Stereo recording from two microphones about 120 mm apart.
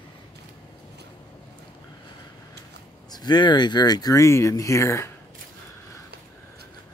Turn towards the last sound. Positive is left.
turn(degrees=25)  # may be behind; listen again after turning